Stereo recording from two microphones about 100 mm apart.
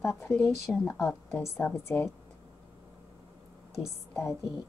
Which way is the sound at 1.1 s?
25° left (ahead or behind).